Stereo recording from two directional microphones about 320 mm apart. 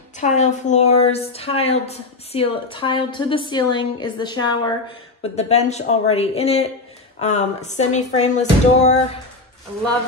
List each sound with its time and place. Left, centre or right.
0.2 s a woman's voice: left